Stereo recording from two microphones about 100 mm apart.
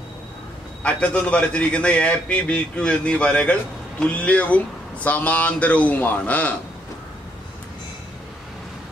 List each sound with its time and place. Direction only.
0.8 s a man's voice: 10° left (ahead or behind)